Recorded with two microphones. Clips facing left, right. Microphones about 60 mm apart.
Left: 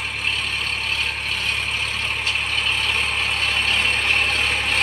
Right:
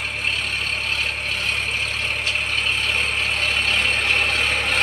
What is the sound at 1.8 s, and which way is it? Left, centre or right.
Vehicle, centre.